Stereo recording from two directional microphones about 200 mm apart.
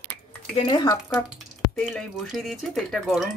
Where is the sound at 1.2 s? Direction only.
Centre (ahead or behind).